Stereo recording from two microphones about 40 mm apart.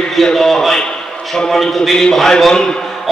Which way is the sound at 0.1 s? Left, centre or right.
Centre.